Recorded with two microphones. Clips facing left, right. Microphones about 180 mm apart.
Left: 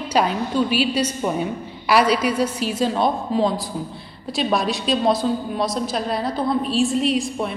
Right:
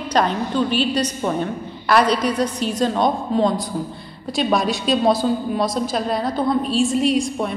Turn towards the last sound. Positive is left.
turn(degrees=0)  # may be behind; listen again after turning